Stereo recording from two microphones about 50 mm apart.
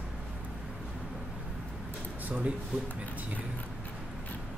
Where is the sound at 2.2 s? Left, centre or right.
Right.